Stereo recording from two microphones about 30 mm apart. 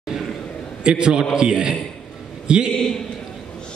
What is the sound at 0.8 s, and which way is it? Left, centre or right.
A man's voice, right.